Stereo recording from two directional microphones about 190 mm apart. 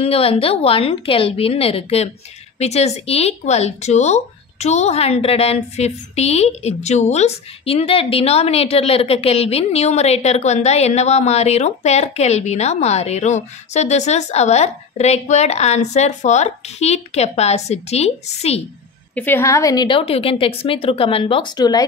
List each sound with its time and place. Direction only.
0.0 s a woman's voice: 30° left (ahead or behind)
19.1 s a woman's voice: 10° left (ahead or behind)